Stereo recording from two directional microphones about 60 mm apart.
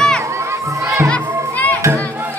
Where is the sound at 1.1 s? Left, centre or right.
Left.